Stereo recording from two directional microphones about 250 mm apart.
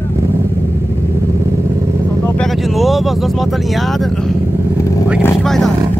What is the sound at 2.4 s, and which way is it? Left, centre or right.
Speech, centre.